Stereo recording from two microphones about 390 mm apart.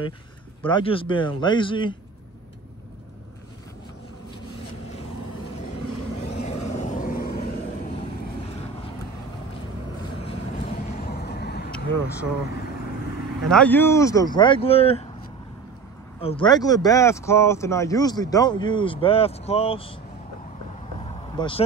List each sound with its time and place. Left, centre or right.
0.6 s speech: centre
6.1 s vehicle: centre
10.1 s vehicle: centre
13.5 s speech: centre
16.2 s speech: centre
21.4 s speech: centre